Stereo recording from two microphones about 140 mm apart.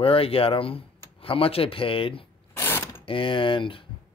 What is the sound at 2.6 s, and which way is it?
Mechanisms, 15° left (ahead or behind).